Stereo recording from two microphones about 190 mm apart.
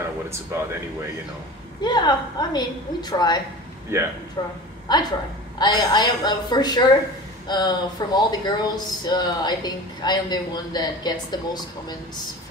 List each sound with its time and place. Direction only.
1.8 s speech: 20° left (ahead or behind)
3.9 s a man's voice: 15° right (ahead or behind)
4.4 s speech: 25° left (ahead or behind)